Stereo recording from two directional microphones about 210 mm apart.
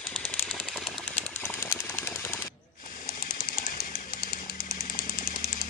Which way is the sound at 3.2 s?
40° left (ahead or behind).